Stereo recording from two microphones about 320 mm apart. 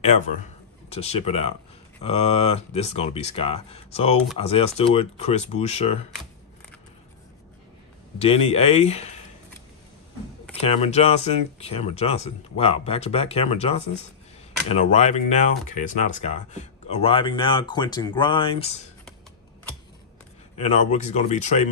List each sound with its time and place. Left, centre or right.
0.8 s speech: centre
8.2 s speech: centre
10.5 s speech: centre
20.5 s speech: left